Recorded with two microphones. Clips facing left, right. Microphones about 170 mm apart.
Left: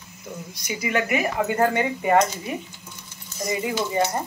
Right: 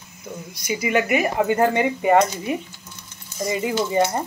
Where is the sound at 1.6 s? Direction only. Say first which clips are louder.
Right 2 dB; 20° right (ahead or behind).